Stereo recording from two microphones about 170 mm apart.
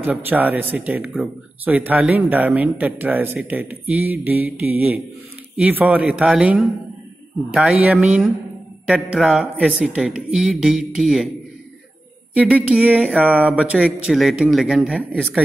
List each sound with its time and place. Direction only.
0.0 s speech: 10° right (ahead or behind)
12.4 s speech: 10° right (ahead or behind)